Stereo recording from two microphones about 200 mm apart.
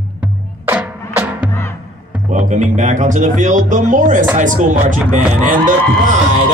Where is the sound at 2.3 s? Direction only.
35° right (ahead or behind).